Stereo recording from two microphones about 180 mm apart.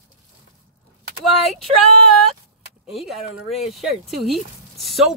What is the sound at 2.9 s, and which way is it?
Speech, centre (ahead or behind).